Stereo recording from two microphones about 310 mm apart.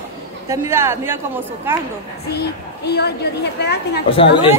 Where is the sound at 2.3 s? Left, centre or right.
Left.